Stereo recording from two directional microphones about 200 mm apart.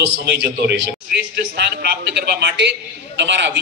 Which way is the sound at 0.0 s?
55° right (ahead or behind).